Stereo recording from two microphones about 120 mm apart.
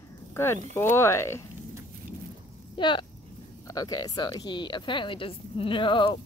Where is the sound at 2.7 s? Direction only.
40° left (ahead or behind).